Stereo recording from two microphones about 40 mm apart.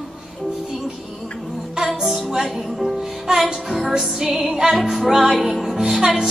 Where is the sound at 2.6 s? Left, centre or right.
Centre.